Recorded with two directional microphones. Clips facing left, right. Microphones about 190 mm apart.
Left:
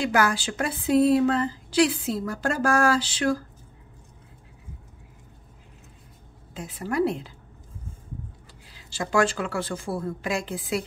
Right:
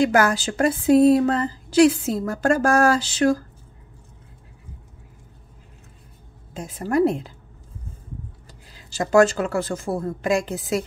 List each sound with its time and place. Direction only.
0.0 s speech: 45° right (ahead or behind)
6.5 s speech: 45° right (ahead or behind)
8.7 s speech: 45° right (ahead or behind)